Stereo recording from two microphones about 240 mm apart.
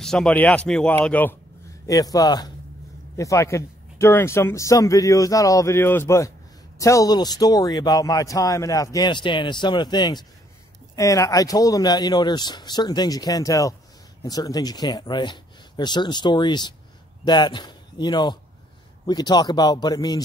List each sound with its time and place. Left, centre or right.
0.0 s speech: centre